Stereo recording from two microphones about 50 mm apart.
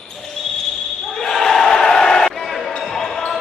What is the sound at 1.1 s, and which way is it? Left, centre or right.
Basketball bounce, centre.